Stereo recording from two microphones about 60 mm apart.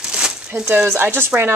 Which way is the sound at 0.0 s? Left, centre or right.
Centre.